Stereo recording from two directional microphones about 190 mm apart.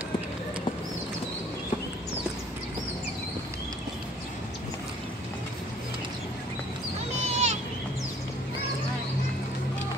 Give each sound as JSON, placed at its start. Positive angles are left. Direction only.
{"t": 7.2, "sound": "vehicle", "side_deg": -35}